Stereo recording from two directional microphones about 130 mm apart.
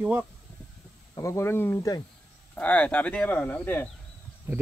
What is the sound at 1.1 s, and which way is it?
Speech, 25° left (ahead or behind).